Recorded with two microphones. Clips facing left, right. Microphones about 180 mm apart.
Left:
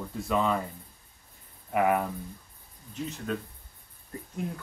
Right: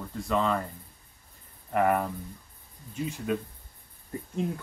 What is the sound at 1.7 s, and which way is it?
Speech, 5° left (ahead or behind).